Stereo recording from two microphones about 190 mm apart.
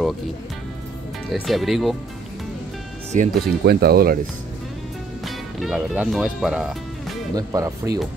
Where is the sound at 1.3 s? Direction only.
Centre (ahead or behind).